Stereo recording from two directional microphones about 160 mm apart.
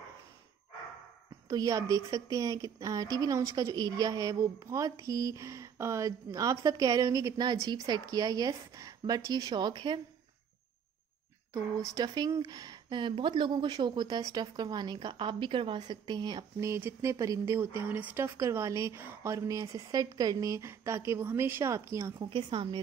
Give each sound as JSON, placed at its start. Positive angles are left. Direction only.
{"t": 1.5, "sound": "a woman's voice", "side_deg": -20}
{"t": 11.9, "sound": "a woman's voice", "side_deg": -25}
{"t": 22.3, "sound": "a woman's voice", "side_deg": -30}